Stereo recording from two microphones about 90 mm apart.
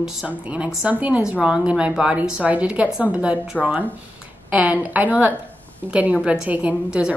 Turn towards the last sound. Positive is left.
turn(degrees=-15)  # may be behind; listen again after turning